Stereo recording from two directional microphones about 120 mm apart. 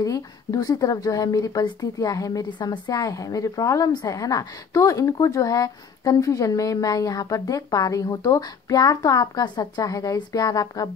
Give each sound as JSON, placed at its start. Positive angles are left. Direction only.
{"t": 0.0, "sound": "speech", "side_deg": 30}